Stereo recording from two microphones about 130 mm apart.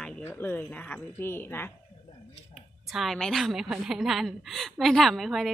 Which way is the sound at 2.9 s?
Centre (ahead or behind).